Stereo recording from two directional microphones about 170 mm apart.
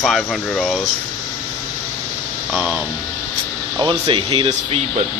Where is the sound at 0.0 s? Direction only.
Centre (ahead or behind).